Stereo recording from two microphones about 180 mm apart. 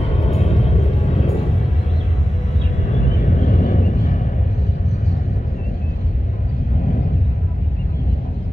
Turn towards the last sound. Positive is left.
turn(degrees=50)  # may be behind; listen again after turning